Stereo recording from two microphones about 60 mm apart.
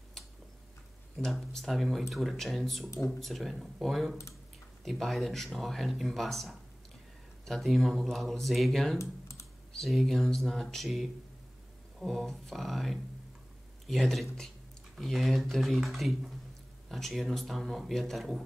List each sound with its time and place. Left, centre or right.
1.3 s speech: centre
8.9 s typing: left
9.7 s speech: centre
12.1 s speech: centre